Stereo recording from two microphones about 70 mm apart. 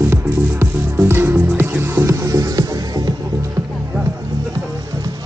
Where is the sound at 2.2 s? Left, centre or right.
Right.